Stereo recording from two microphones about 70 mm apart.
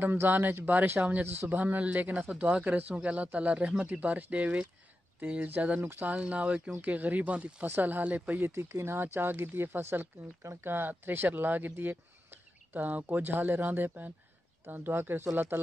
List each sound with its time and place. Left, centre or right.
0.0 s speech: right
6.1 s speech: centre
7.6 s speech: right